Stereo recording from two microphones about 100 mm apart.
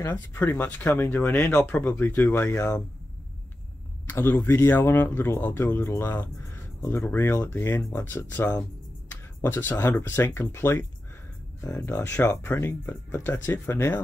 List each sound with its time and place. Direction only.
0.1 s speech: 20° left (ahead or behind)
4.1 s speech: 20° left (ahead or behind)